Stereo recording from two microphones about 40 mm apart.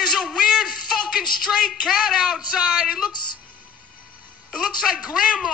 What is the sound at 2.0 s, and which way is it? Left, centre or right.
A man's voice, right.